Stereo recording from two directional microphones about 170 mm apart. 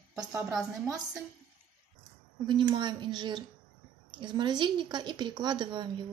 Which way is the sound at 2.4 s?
25° right (ahead or behind).